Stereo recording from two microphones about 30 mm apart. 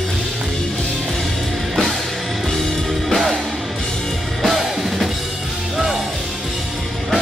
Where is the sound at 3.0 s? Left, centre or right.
Centre.